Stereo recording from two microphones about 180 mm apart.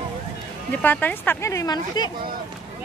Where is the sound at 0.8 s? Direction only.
10° left (ahead or behind).